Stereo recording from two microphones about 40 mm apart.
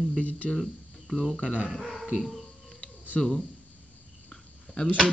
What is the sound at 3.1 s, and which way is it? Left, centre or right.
Speech, centre.